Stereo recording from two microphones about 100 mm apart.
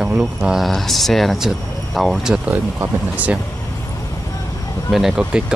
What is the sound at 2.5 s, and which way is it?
Speech, 20° right (ahead or behind).